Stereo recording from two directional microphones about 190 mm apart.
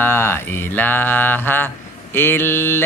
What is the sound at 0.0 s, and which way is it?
Mantra, 10° left (ahead or behind).